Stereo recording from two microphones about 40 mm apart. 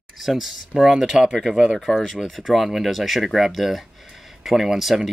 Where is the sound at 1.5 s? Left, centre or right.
Right.